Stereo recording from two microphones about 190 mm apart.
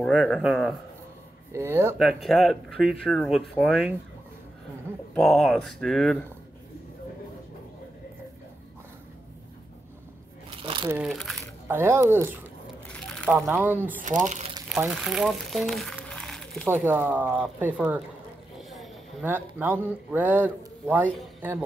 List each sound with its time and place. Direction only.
0.4 s speech: centre (ahead or behind)
1.5 s a man's voice: 15° right (ahead or behind)
2.0 s speech: centre (ahead or behind)
5.1 s speech: centre (ahead or behind)
10.5 s shuffling cards: 25° right (ahead or behind)
10.9 s speech: 5° right (ahead or behind)
11.6 s a man's voice: 10° right (ahead or behind)
13.0 s a sound: 5° left (ahead or behind)
13.5 s a man's voice: 10° right (ahead or behind)
14.0 s speech: 40° right (ahead or behind)
14.7 s speech: 5° right (ahead or behind)
16.6 s a man's voice: 10° right (ahead or behind)
19.2 s a man's voice: 10° right (ahead or behind)